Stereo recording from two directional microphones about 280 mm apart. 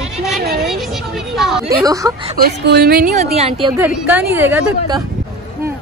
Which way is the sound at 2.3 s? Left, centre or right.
Right.